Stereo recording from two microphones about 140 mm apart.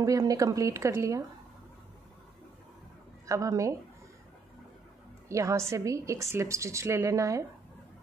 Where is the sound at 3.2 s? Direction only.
25° right (ahead or behind).